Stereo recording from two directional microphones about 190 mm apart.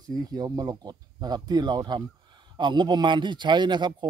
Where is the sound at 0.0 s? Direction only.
20° right (ahead or behind).